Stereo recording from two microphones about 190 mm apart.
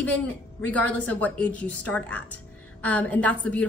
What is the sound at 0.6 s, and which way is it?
A woman's voice, 5° left (ahead or behind).